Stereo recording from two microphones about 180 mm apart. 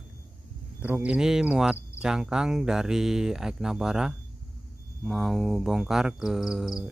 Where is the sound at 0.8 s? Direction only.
5° right (ahead or behind).